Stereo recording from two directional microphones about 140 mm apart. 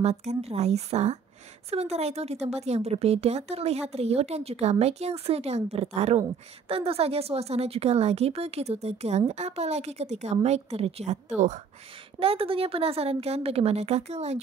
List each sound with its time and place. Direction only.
0.0 s speech: 50° right (ahead or behind)
12.2 s speech: 40° right (ahead or behind)